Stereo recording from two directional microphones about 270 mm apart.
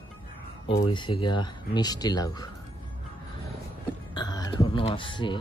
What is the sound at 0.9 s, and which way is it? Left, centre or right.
Speech, centre.